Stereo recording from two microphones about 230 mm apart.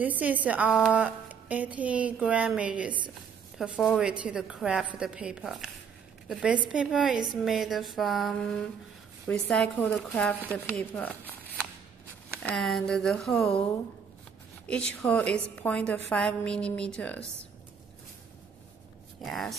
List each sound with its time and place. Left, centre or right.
0.0 s a woman's voice: centre
12.4 s a woman's voice: centre
14.7 s a woman's voice: centre
19.2 s a woman's voice: centre